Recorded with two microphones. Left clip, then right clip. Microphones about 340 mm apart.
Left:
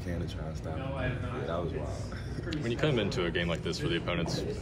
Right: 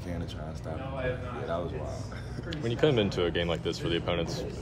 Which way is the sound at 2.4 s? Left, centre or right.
Right.